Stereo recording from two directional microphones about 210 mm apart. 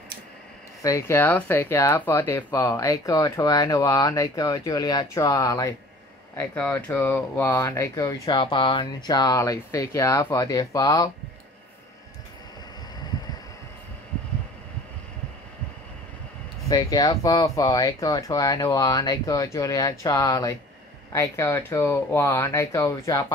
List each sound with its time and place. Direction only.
0.8 s speech: 15° left (ahead or behind)
16.6 s speech: 20° left (ahead or behind)